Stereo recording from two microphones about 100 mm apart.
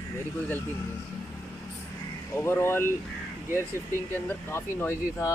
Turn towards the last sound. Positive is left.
turn(degrees=25)  # may be behind; listen again after turning